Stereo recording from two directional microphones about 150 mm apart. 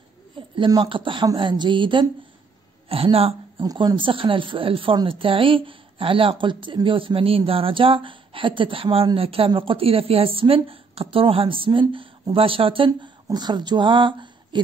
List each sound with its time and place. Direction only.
0.6 s a woman's voice: 30° right (ahead or behind)
3.6 s speech: 30° right (ahead or behind)